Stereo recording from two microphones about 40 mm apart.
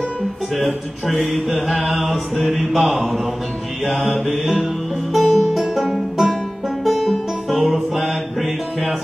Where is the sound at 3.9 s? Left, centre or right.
Left.